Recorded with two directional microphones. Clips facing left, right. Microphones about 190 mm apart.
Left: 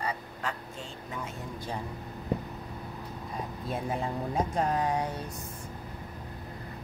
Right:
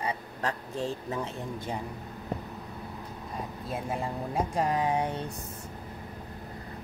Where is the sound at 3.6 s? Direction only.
5° right (ahead or behind); by 5.2 s 20° right (ahead or behind).